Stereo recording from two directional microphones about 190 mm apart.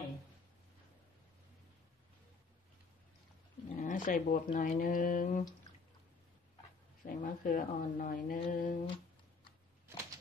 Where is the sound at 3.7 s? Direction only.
45° left (ahead or behind).